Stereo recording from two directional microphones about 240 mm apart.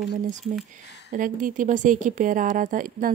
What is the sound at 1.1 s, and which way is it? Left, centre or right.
Speech, right.